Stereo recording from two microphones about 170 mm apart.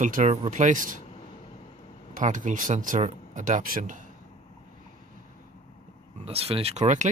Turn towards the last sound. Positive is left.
turn(degrees=-45)  # may be behind; listen again after turning